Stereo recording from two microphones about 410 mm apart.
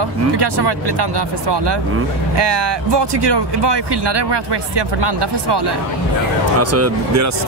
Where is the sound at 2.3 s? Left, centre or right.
Right.